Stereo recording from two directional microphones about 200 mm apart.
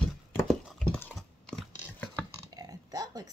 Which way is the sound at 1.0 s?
5° left (ahead or behind).